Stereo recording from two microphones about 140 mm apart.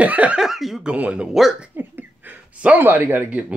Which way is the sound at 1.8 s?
15° right (ahead or behind).